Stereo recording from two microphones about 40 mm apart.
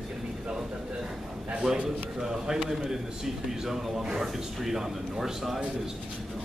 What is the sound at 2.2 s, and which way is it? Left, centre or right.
A man's voice, centre.